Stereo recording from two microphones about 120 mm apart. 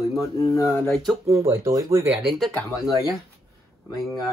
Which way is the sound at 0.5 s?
25° left (ahead or behind).